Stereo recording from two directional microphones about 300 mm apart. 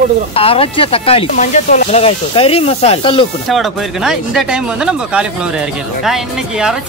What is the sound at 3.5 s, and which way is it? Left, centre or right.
Speech, centre.